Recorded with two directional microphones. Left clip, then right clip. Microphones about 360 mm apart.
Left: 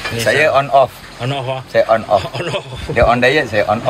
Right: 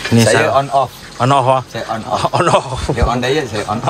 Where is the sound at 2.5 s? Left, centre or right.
Centre.